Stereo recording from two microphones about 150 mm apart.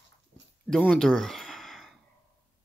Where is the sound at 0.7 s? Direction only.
5° left (ahead or behind).